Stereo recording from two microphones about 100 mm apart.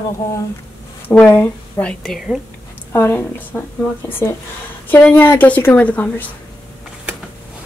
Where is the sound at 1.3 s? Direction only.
25° left (ahead or behind).